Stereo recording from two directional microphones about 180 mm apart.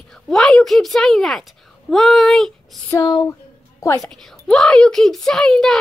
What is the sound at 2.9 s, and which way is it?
Speech, 20° left (ahead or behind).